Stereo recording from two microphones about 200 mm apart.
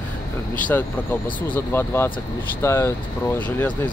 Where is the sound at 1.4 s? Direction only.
10° left (ahead or behind).